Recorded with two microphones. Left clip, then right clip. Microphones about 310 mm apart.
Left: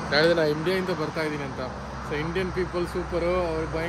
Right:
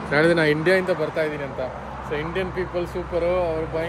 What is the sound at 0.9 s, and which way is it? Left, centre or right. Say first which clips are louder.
Speech: right 5 dB; centre.